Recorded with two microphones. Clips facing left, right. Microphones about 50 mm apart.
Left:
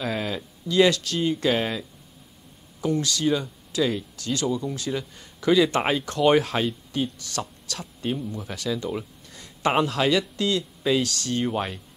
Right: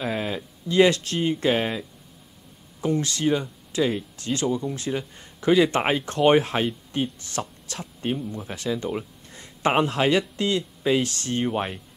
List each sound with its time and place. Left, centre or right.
0.0 s a sound: centre
0.7 s speech: right
2.8 s speech: right
11.4 s speech: centre